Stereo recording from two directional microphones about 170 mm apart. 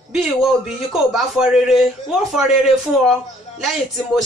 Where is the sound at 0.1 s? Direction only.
Centre (ahead or behind).